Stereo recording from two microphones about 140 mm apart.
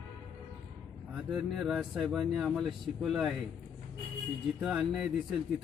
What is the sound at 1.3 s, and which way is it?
Speech, centre (ahead or behind).